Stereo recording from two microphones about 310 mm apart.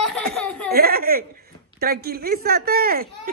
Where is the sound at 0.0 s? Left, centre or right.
Centre.